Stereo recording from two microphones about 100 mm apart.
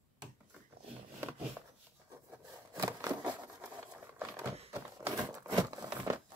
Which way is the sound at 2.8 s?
40° right (ahead or behind).